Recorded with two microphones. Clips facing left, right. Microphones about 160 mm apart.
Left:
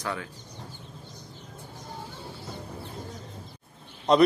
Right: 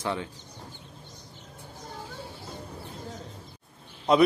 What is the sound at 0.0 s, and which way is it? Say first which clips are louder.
Speech: right 2 dB; 25° right (ahead or behind).